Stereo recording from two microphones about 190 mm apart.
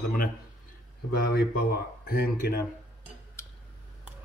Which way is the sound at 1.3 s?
55° left (ahead or behind).